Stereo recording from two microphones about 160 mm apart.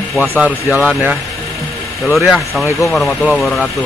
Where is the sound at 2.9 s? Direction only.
Centre (ahead or behind).